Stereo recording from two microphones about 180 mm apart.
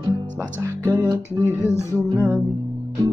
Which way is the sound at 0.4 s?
15° right (ahead or behind).